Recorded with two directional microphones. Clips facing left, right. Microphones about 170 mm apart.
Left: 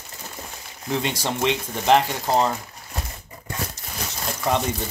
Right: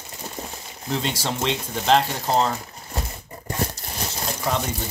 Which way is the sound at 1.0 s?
15° left (ahead or behind).